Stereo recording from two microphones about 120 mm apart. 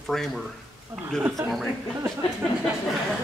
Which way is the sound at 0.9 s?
15° right (ahead or behind).